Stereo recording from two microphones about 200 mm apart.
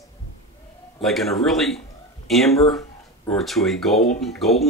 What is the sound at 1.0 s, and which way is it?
Speech, centre (ahead or behind).